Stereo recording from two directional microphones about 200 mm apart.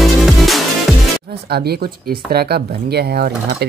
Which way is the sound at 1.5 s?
50° right (ahead or behind).